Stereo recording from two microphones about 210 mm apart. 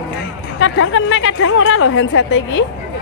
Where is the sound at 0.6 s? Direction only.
65° left (ahead or behind).